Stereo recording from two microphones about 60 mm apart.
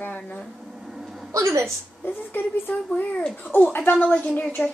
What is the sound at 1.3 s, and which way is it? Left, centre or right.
Speech, right.